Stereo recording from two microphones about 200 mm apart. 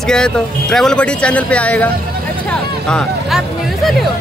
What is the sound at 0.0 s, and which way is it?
Speech, 5° left (ahead or behind).